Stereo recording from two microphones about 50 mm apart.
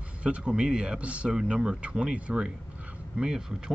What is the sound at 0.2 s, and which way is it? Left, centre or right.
A man's voice, right.